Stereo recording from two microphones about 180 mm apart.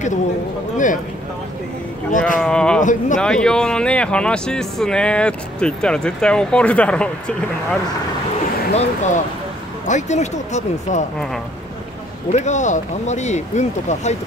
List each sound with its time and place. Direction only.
2.1 s speech: 45° left (ahead or behind)
2.4 s a sound: 5° left (ahead or behind)
2.8 s speech: 45° left (ahead or behind)
3.2 s speech: 5° left (ahead or behind)
8.7 s speech: 40° left (ahead or behind)
12.3 s speech: 40° left (ahead or behind)